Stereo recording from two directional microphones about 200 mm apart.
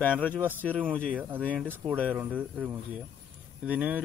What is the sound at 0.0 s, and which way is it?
Speech, 10° left (ahead or behind).